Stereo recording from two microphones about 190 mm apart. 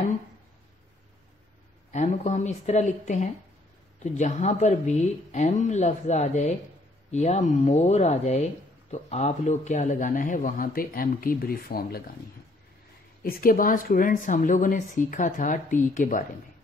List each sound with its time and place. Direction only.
1.9 s speech: 35° left (ahead or behind)
13.2 s speech: 50° left (ahead or behind)